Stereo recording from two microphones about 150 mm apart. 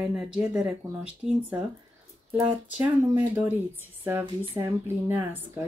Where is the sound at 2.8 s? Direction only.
15° right (ahead or behind).